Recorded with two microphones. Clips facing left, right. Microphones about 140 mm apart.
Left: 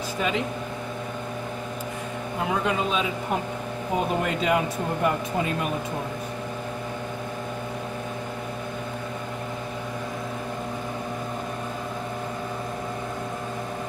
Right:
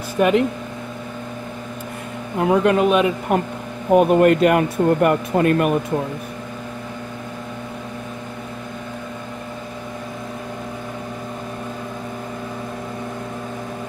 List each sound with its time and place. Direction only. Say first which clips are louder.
0.2 s speech: right 11 dB; 60° right (ahead or behind)
2.4 s speech: right 10 dB; 60° right (ahead or behind)